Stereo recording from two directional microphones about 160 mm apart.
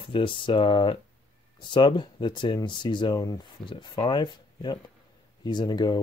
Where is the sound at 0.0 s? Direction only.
30° left (ahead or behind).